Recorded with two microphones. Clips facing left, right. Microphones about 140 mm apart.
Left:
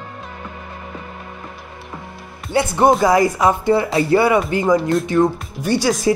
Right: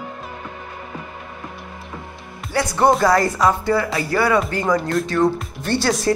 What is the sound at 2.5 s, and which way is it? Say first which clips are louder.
A woman's voice: left 2 dB; 20° left (ahead or behind).